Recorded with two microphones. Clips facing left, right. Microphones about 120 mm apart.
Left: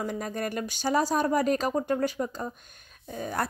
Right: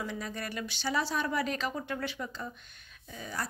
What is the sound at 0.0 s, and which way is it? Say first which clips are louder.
Speech: left 6 dB; 45° left (ahead or behind).